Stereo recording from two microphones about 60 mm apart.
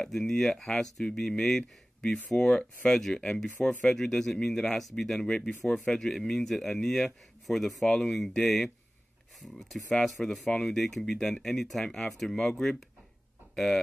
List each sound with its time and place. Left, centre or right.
0.0 s speech: centre
2.9 s speech: centre